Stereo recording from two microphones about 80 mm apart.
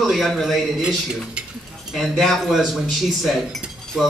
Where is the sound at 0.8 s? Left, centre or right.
Centre.